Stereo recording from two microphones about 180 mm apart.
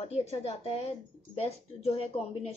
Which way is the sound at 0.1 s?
35° left (ahead or behind).